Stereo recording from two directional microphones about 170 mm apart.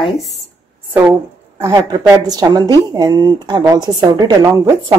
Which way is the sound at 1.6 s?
20° right (ahead or behind).